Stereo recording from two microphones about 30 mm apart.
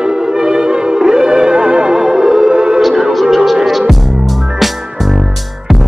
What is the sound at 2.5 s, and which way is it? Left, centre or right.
Music, right.